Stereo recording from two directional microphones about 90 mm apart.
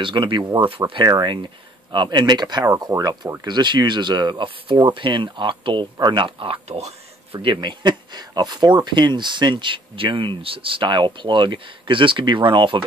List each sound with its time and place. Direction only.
0.0 s speech: 65° right (ahead or behind)
0.7 s speech: 70° right (ahead or behind)
6.7 s speech: 90° right
7.4 s speech: 55° right (ahead or behind)